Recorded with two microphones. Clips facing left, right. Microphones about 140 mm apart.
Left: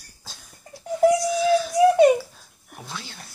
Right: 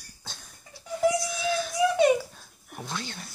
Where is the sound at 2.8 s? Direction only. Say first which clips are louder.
Right 2 dB; centre (ahead or behind).